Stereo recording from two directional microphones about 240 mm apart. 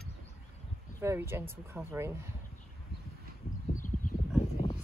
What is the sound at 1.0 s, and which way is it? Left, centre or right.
Speech, centre.